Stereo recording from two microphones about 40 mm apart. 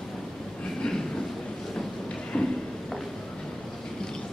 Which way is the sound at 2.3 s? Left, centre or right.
Centre.